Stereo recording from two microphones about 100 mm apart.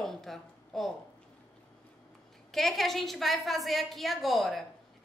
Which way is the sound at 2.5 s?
Centre (ahead or behind).